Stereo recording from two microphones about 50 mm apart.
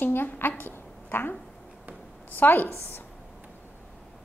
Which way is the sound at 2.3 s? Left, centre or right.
Left.